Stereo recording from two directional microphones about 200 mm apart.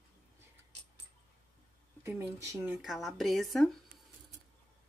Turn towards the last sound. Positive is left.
turn(degrees=0)  # may be behind; listen again after turning